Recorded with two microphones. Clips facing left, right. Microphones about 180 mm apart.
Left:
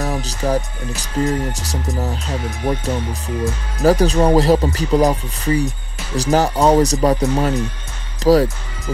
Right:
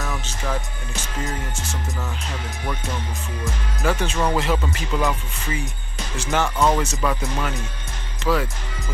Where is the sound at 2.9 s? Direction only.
15° left (ahead or behind).